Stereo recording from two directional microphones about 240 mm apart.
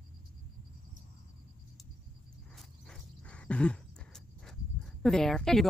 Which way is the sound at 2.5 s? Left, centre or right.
Centre.